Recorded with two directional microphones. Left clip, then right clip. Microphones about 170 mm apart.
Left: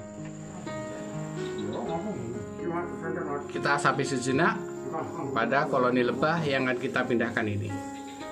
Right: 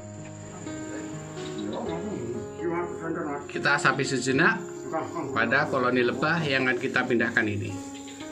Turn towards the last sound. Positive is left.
turn(degrees=0)  # may be behind; listen again after turning